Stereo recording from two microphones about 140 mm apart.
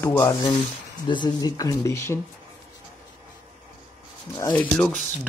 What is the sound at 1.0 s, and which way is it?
Speech, 35° left (ahead or behind).